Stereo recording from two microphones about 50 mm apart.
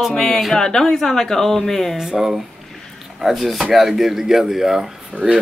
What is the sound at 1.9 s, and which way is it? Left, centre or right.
Speech, centre.